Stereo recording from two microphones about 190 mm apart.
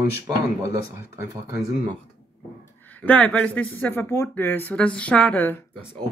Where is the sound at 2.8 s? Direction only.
10° left (ahead or behind).